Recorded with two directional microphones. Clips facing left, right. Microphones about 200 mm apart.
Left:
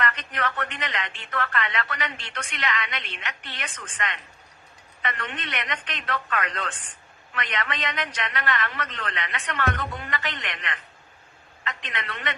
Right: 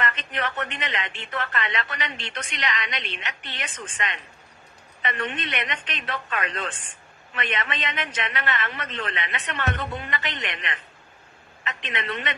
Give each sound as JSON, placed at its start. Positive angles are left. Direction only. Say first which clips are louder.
{"t": 0.0, "sound": "a man's voice", "louder": "even", "side_deg": -25}